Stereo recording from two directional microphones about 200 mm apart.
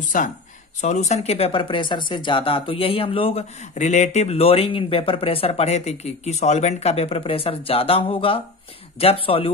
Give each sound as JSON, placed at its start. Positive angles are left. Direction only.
{"t": 0.1, "sound": "speech", "side_deg": 40}